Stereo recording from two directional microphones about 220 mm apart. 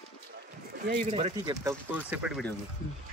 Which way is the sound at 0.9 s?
30° right (ahead or behind).